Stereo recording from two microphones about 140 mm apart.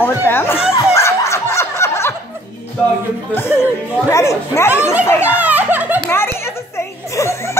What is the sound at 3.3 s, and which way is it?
Speech, 15° left (ahead or behind).